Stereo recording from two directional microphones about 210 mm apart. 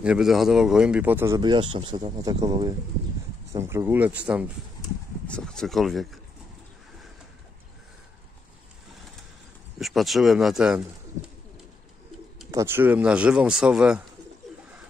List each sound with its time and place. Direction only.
0.0 s speech: 5° right (ahead or behind)
9.8 s speech: centre (ahead or behind)
12.4 s speech: 15° right (ahead or behind)